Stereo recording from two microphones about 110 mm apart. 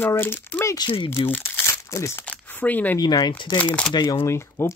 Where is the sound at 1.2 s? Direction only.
20° left (ahead or behind).